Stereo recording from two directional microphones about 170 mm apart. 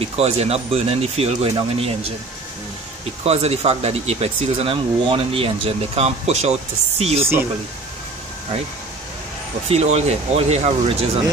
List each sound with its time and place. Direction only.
0.0 s speech: 35° right (ahead or behind)
3.3 s speech: 40° right (ahead or behind)
9.7 s speech: 40° right (ahead or behind)